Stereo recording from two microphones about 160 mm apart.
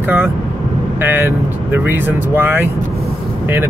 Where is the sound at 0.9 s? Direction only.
10° right (ahead or behind).